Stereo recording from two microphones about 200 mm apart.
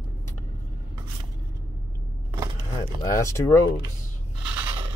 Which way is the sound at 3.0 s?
15° left (ahead or behind).